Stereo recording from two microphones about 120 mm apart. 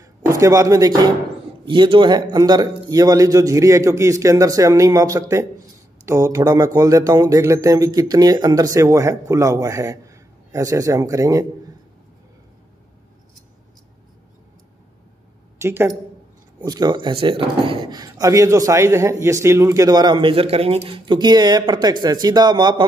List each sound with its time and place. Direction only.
0.2 s speech: 25° right (ahead or behind)
1.7 s speech: 45° right (ahead or behind); by 11.4 s 25° right (ahead or behind)
15.6 s speech: 20° right (ahead or behind)
16.6 s speech: 35° right (ahead or behind)